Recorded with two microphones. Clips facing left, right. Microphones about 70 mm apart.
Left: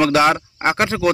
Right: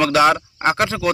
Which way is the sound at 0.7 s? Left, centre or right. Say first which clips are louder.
Left 1 dB; left.